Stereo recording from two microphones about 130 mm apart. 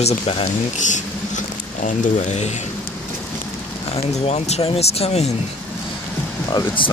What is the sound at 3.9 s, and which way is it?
Speech, 50° left (ahead or behind).